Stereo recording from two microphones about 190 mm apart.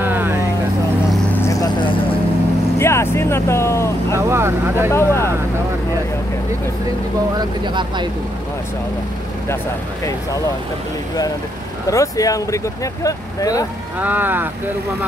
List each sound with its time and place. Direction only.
0.0 s vehicle: 10° right (ahead or behind)
1.3 s vehicle: 15° left (ahead or behind)
2.8 s speech: 15° left (ahead or behind)
4.3 s speech: 15° right (ahead or behind)
4.9 s speech: 15° left (ahead or behind)
7.3 s speech: 25° right (ahead or behind)
11.9 s speech: 15° left (ahead or behind)
13.9 s speech: 10° right (ahead or behind)